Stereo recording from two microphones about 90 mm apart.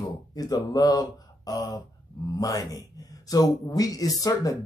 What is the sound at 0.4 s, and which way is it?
Speech, 45° left (ahead or behind).